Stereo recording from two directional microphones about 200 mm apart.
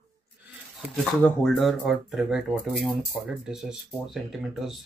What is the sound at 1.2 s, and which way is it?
Speech, 5° left (ahead or behind).